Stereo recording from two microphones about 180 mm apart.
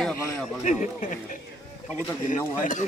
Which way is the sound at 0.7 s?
40° left (ahead or behind).